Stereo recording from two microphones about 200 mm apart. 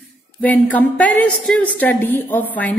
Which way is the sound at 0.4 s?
10° left (ahead or behind).